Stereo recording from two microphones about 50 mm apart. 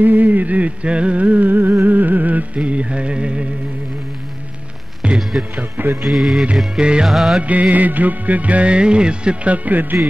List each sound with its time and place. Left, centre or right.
0.0 s music: right
5.0 s music: right
5.6 s speech: right
6.0 s music: centre
6.7 s music: centre
7.1 s music: centre
7.7 s music: right